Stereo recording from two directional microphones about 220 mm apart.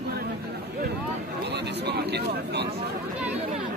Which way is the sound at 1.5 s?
50° right (ahead or behind).